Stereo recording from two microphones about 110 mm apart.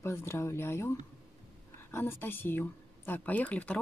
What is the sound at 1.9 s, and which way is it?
Speech, 20° left (ahead or behind).